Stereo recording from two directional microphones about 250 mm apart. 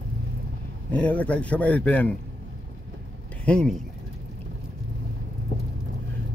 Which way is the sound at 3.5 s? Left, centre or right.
Centre.